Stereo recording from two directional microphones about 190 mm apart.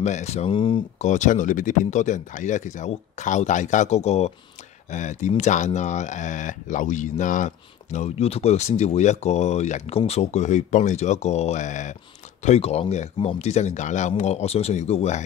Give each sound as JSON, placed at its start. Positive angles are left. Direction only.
{"t": 0.0, "sound": "speech", "side_deg": 35}
{"t": 0.9, "sound": "speech", "side_deg": 40}